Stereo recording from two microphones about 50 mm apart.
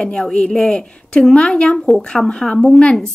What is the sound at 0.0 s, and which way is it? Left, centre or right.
A woman's voice, centre.